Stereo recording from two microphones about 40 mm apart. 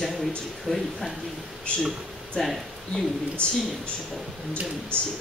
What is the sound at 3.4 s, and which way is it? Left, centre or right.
Speech, left.